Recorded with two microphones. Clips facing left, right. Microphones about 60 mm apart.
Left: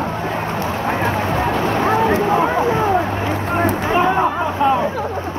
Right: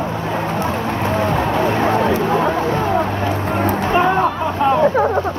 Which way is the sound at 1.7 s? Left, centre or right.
Centre.